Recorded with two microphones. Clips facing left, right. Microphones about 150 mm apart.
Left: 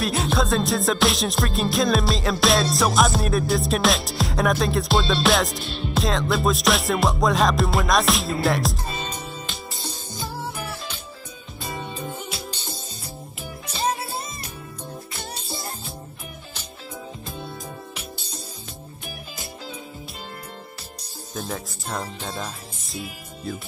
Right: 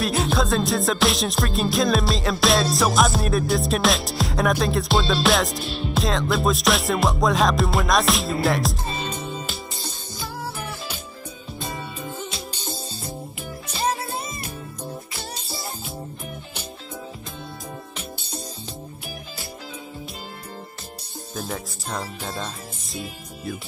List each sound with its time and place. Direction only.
0.0 s music: centre (ahead or behind)
8.8 s music: 30° right (ahead or behind)
15.5 s music: centre (ahead or behind)
21.4 s music: centre (ahead or behind)